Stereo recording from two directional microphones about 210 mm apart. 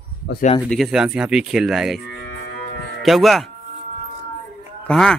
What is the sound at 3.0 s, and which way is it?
Speech, centre (ahead or behind).